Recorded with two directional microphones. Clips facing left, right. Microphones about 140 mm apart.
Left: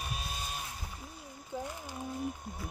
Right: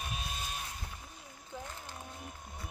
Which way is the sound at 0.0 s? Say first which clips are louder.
Left 1 dB; centre (ahead or behind).